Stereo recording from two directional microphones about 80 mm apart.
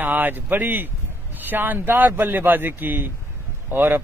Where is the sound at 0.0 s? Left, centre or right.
Right.